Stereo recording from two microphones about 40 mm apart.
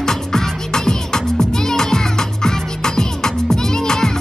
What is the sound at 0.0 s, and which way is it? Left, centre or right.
Music, centre.